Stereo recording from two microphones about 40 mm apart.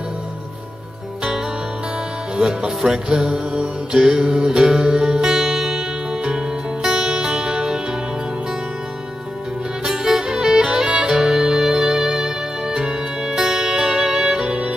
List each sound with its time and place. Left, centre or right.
2.3 s music: right
9.8 s music: centre